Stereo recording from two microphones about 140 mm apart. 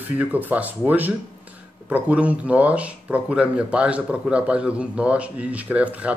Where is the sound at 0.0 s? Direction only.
10° right (ahead or behind).